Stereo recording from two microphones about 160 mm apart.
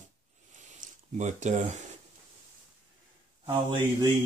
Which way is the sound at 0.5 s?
50° right (ahead or behind).